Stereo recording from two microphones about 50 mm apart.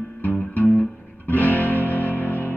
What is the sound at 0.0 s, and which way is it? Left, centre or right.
Music, left.